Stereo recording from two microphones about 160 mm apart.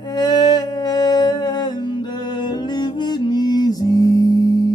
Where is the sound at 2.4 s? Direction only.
30° left (ahead or behind).